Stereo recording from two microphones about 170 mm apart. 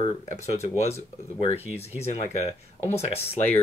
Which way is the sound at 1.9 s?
40° left (ahead or behind).